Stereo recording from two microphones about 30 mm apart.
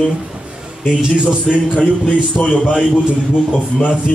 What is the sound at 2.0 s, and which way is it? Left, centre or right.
Speech, left.